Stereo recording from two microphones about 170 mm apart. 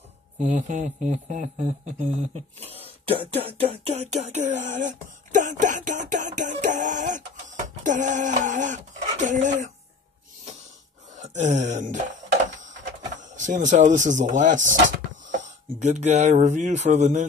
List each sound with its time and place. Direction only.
0.6 s speech: 45° right (ahead or behind)
11.1 s a sound: 45° right (ahead or behind)
13.2 s speech: 45° right (ahead or behind)